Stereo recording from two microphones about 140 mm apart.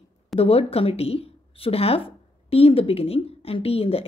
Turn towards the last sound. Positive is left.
turn(degrees=45)  # may be behind; listen again after turning